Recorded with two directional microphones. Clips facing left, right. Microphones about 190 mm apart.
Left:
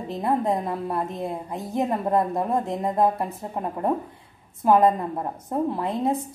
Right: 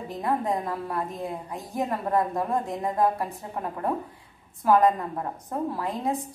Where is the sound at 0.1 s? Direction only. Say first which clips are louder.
Left 3 dB; 25° left (ahead or behind).